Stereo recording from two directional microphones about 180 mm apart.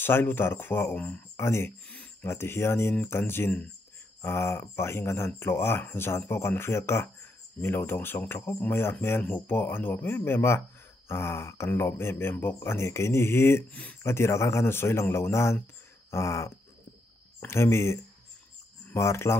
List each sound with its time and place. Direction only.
0.0 s speech: 10° left (ahead or behind)